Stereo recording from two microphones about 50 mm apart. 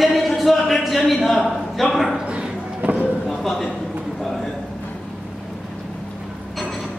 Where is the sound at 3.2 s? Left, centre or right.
Centre.